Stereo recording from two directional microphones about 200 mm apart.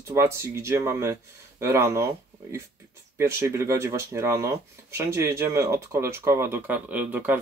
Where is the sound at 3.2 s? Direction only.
15° right (ahead or behind).